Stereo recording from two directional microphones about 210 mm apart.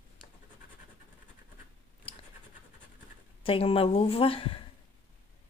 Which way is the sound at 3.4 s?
25° left (ahead or behind).